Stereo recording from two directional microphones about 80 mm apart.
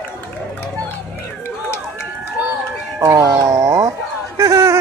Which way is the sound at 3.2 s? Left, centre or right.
Right.